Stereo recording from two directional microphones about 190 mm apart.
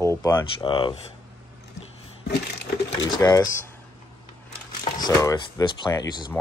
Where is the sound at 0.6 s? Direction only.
25° left (ahead or behind).